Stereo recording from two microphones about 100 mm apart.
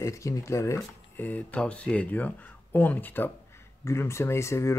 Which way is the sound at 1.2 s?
15° left (ahead or behind).